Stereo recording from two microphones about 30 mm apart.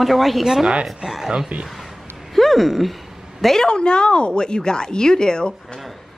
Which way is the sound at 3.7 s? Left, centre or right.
Left.